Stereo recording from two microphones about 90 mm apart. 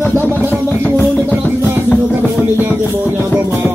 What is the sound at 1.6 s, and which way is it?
Music, 25° right (ahead or behind).